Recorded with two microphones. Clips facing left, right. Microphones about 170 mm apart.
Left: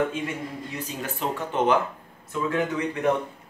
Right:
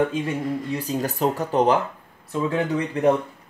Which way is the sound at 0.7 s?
35° right (ahead or behind).